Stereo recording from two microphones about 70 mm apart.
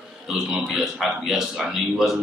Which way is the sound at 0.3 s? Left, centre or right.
Centre.